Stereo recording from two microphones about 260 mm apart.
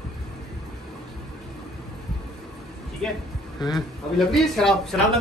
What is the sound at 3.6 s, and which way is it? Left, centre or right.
Speech, centre.